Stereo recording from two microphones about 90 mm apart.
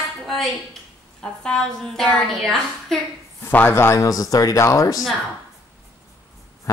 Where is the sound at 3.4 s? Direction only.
25° left (ahead or behind).